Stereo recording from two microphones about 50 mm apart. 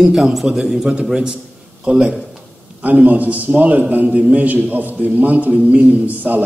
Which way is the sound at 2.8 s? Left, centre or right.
Right.